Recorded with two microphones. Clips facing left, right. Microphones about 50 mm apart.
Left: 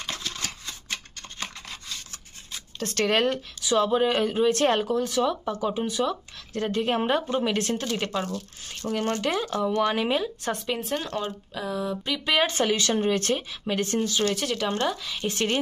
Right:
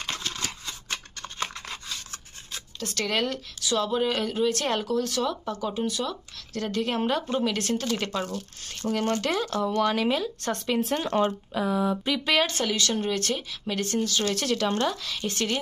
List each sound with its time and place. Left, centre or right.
1.4 s a sound: right
2.8 s speech: left
3.6 s speech: left
7.8 s speech: centre
10.6 s speech: centre
11.1 s speech: right
11.5 s speech: centre
12.3 s speech: centre
14.3 s speech: centre
15.2 s speech: left